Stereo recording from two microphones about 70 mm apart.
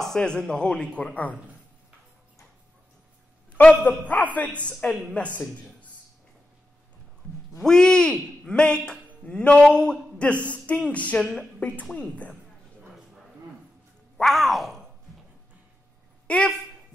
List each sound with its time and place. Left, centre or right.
0.0 s a man's voice: centre
3.8 s a man's voice: left
7.6 s a man's voice: centre
11.1 s speech: centre
11.6 s a man's voice: left
14.1 s speech: centre
16.3 s speech: centre